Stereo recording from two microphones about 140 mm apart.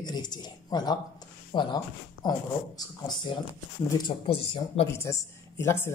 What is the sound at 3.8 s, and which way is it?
Speech, 30° left (ahead or behind).